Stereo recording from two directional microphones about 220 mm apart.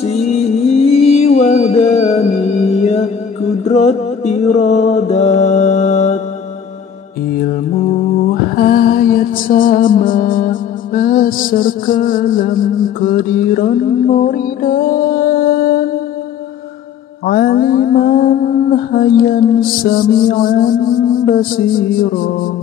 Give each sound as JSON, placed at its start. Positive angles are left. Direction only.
{"t": 0.0, "sound": "music", "side_deg": 30}
{"t": 3.6, "sound": "mantra", "side_deg": 30}
{"t": 8.3, "sound": "music", "side_deg": 40}
{"t": 17.3, "sound": "mantra", "side_deg": 40}